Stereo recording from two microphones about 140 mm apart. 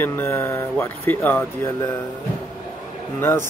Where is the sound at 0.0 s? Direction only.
15° left (ahead or behind).